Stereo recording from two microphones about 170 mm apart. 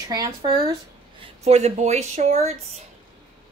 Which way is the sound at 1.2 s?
40° right (ahead or behind).